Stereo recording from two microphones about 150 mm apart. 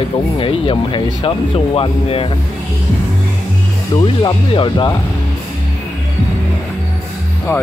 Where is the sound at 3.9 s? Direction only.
30° left (ahead or behind).